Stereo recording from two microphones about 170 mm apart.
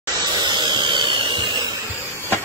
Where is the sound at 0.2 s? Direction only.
25° right (ahead or behind).